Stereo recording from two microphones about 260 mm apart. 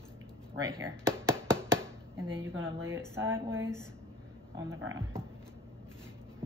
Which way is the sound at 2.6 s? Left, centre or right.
Centre.